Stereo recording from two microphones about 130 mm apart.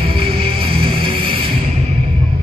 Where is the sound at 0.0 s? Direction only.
45° right (ahead or behind).